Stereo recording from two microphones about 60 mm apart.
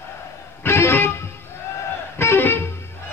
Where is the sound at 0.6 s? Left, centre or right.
Left.